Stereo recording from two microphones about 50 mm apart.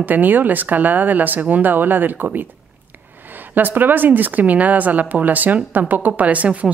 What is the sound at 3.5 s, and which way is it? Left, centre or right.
Speech, right.